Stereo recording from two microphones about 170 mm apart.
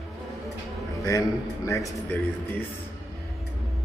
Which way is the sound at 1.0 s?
20° left (ahead or behind).